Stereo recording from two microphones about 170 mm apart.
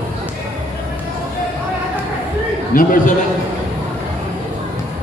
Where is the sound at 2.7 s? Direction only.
55° left (ahead or behind).